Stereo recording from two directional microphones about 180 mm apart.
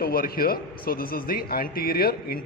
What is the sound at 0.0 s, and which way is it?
A man's voice, 55° left (ahead or behind).